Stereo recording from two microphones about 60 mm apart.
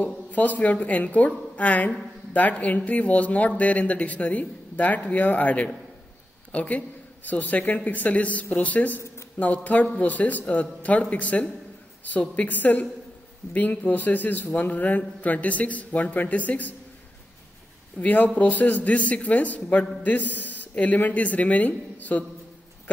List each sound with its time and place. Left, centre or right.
0.3 s speech: left
17.9 s speech: left